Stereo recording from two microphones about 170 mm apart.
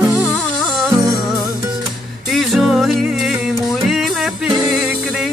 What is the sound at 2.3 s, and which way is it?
Music, centre (ahead or behind).